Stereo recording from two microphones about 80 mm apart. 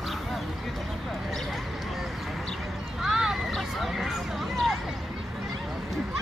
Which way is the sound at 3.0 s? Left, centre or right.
Centre.